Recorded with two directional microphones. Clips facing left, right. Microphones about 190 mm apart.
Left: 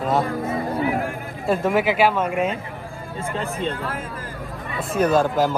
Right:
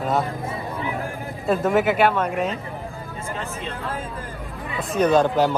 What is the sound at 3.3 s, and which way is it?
Speech, 30° left (ahead or behind).